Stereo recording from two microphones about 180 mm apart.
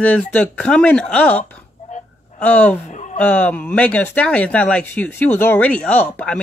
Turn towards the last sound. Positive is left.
turn(degrees=10)  # may be behind; listen again after turning